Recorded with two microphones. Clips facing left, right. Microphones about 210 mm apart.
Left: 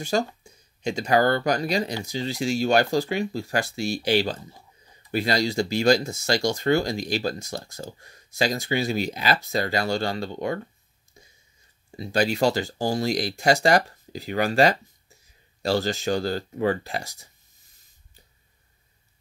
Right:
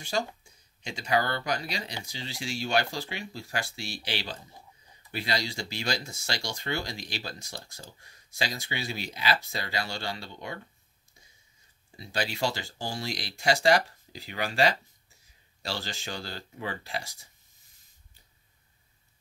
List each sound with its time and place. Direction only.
0.0 s speech: 45° left (ahead or behind)
12.0 s speech: 45° left (ahead or behind)